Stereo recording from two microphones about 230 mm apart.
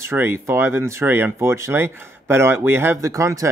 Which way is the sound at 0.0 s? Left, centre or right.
Centre.